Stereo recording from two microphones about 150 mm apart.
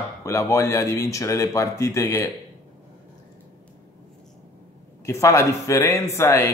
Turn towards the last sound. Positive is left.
turn(degrees=20)  # may be behind; listen again after turning